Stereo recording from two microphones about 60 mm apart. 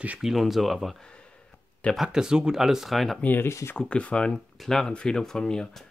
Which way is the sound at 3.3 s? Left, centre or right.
Left.